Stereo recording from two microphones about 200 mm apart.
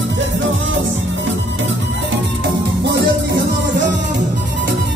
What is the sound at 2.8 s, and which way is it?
Music, 55° right (ahead or behind).